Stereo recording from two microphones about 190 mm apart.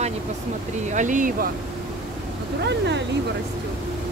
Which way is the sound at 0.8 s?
40° right (ahead or behind).